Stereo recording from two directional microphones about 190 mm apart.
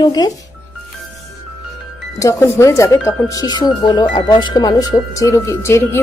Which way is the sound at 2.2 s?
15° left (ahead or behind).